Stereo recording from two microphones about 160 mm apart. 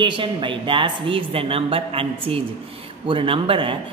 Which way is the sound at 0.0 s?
30° right (ahead or behind).